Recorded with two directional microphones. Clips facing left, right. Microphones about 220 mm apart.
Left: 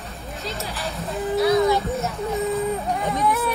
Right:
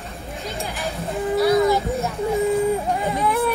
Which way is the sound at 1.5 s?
Centre (ahead or behind).